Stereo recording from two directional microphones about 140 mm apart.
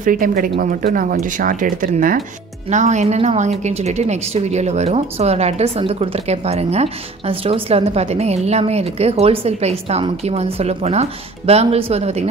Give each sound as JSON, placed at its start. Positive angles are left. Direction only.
{"t": 0.0, "sound": "speech", "side_deg": -80}
{"t": 2.7, "sound": "a woman's voice", "side_deg": -60}